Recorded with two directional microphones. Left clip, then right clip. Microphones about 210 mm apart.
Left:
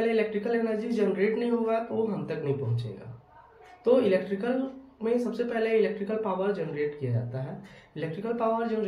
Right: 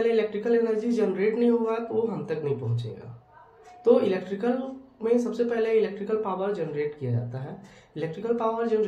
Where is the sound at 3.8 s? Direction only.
25° right (ahead or behind).